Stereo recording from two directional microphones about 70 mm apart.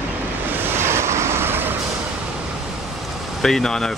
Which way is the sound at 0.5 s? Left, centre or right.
Right.